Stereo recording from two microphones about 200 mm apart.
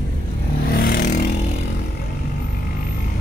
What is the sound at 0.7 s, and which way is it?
Vehicle, 45° left (ahead or behind).